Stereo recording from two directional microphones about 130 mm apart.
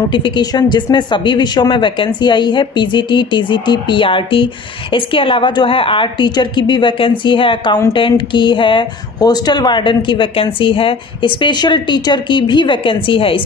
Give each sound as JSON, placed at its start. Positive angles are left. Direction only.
{"t": 0.1, "sound": "speech", "side_deg": 35}